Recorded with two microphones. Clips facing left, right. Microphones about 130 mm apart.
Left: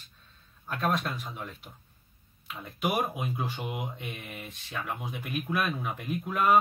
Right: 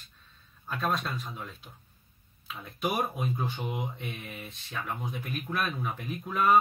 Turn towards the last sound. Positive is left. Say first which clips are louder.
# even
turn(degrees=5)  # may be behind; listen again after turning